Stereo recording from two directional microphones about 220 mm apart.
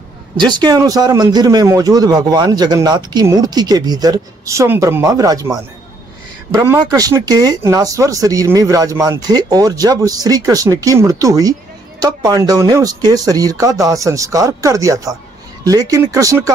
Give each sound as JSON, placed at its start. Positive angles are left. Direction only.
{"t": 0.5, "sound": "speech", "side_deg": -20}